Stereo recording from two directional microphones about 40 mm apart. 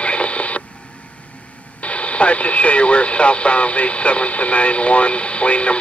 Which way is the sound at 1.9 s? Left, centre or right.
Left.